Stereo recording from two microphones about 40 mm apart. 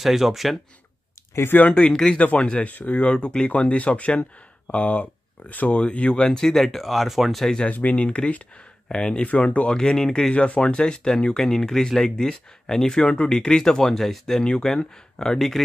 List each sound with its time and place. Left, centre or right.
0.0 s speech: centre
1.5 s speech: left
1.9 s speech: centre
2.1 s speech: left
2.7 s speech: left
3.0 s speech: left
6.4 s speech: centre
7.7 s speech: left
8.8 s speech: centre
9.2 s speech: left
9.7 s speech: centre
10.3 s speech: left; by 13.0 s centre
13.0 s speech: left; by 14.4 s centre
14.4 s speech: left